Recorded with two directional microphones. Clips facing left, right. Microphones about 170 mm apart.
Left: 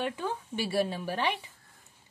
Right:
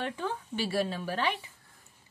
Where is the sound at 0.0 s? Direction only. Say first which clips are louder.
Left 1 dB; 10° left (ahead or behind).